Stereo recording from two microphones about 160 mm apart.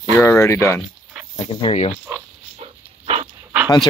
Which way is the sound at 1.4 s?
35° left (ahead or behind).